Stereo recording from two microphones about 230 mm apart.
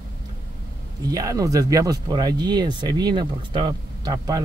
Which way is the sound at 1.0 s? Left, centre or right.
Centre.